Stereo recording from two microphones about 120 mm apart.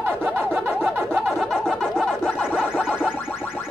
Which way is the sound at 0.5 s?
10° right (ahead or behind).